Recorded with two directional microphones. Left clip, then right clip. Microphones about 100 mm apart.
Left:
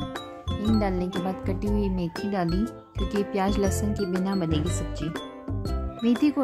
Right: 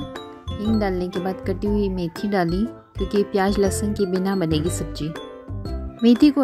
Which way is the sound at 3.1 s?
30° right (ahead or behind).